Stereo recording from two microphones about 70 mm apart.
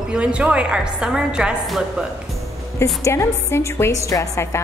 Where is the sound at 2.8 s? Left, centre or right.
Left.